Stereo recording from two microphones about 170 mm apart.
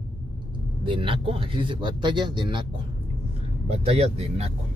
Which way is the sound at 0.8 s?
30° right (ahead or behind).